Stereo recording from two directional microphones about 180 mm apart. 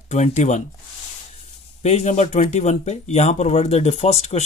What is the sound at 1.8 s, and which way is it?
Speech, 40° left (ahead or behind).